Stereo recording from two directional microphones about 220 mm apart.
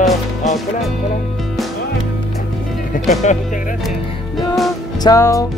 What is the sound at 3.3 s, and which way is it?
Speech, 30° left (ahead or behind).